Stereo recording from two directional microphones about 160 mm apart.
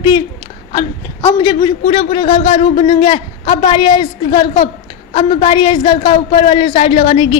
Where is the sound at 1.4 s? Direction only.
30° left (ahead or behind).